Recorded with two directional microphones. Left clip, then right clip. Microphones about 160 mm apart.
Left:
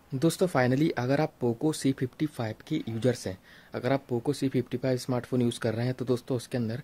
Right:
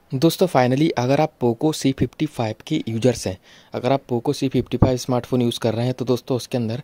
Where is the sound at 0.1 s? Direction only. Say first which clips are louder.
Right 9 dB; 45° right (ahead or behind).